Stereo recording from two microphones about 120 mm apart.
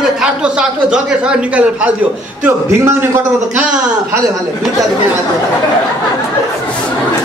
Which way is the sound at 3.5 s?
10° right (ahead or behind).